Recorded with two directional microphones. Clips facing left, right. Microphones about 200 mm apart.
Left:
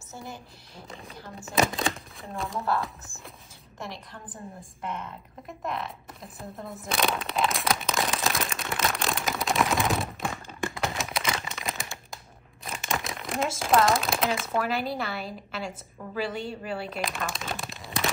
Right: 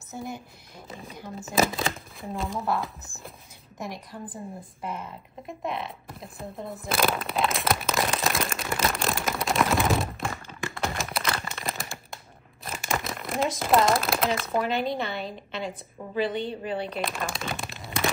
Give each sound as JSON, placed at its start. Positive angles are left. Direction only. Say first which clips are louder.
{"t": 1.0, "sound": "speech", "louder": "right 3 dB", "side_deg": -15}
{"t": 1.3, "sound": "speech", "louder": "right 1 dB", "side_deg": 0}
{"t": 3.8, "sound": "a woman's voice", "louder": "right 4 dB", "side_deg": -10}
{"t": 10.8, "sound": "a sound", "louder": "right 3 dB", "side_deg": 0}
{"t": 12.6, "sound": "speech", "louder": "right 1 dB", "side_deg": 0}